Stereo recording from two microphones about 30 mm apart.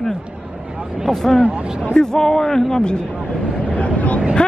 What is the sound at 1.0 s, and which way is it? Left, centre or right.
A man's voice, centre.